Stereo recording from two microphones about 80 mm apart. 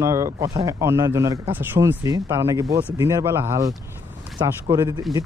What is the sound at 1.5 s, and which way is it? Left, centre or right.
Speech, right.